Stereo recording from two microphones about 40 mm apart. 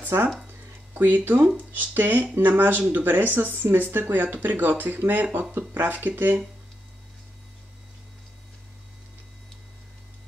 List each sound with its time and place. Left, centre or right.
0.9 s speech: right
1.7 s speech: right